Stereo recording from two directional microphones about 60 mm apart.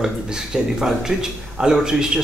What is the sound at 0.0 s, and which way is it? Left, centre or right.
A man's voice, centre.